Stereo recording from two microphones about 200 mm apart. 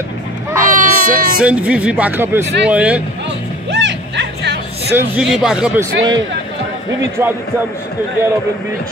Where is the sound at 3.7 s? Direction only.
60° right (ahead or behind).